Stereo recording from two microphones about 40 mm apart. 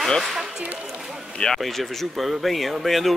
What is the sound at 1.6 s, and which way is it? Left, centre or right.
Speech, centre.